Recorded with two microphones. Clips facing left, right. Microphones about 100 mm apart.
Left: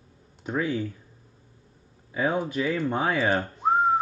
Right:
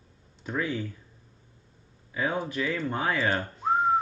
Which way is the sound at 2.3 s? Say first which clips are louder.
Left 3 dB; 20° left (ahead or behind).